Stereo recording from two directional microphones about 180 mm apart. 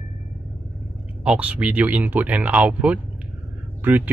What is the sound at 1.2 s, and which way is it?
Speech, 5° right (ahead or behind).